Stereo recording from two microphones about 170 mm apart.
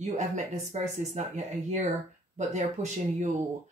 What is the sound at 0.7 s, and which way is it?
Speech, 45° right (ahead or behind).